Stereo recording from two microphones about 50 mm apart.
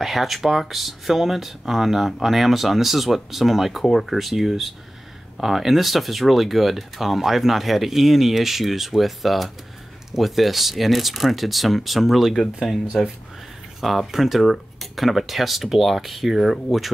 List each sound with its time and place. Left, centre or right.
0.0 s speech: centre